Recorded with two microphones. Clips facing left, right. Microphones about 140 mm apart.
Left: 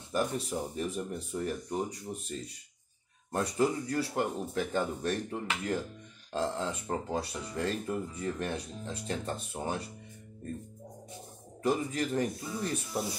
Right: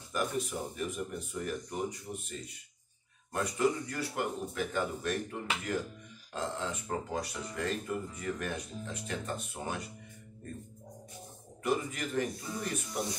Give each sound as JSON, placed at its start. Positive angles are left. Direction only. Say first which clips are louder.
{"t": 0.1, "sound": "speech", "louder": "left 2 dB", "side_deg": 35}
{"t": 6.3, "sound": "speech", "louder": "left 4 dB", "side_deg": 30}
{"t": 11.6, "sound": "speech", "louder": "left 3 dB", "side_deg": 35}
{"t": 12.4, "sound": "speech", "louder": "left 2 dB", "side_deg": 0}